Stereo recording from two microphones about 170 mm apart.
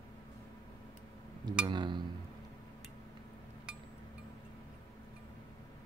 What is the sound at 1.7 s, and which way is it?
Chink, 25° right (ahead or behind).